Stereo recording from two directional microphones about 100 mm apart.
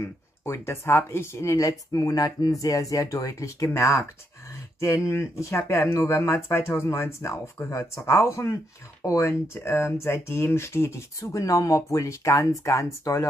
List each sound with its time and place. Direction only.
0.0 s speech: 25° left (ahead or behind)